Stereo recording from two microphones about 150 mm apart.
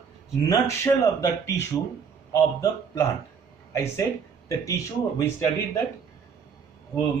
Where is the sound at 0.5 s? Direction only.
20° left (ahead or behind).